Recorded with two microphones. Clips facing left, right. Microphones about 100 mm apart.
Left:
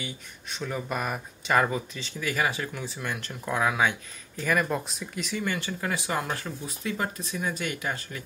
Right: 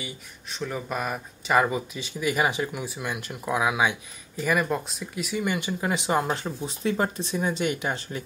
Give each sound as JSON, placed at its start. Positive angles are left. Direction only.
{"t": 0.0, "sound": "speech", "side_deg": 0}